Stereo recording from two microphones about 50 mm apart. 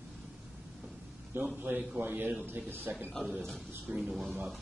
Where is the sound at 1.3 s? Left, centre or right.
Right.